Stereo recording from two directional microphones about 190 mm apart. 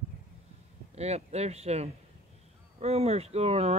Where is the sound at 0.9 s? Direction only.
35° right (ahead or behind).